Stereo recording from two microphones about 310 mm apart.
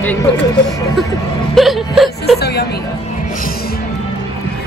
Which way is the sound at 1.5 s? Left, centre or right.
Centre.